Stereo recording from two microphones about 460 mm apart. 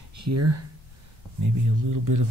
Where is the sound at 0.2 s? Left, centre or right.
Right.